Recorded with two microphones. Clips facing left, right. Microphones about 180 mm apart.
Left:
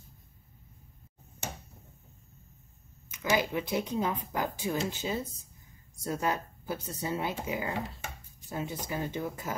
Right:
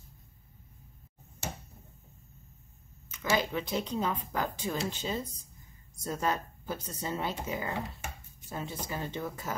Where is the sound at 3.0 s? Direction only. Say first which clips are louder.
Left 1 dB; 15° left (ahead or behind).